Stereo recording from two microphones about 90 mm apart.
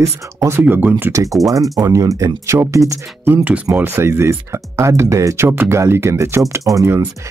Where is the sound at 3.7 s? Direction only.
25° right (ahead or behind).